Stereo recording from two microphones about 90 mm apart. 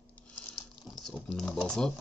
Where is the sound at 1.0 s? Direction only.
5° left (ahead or behind).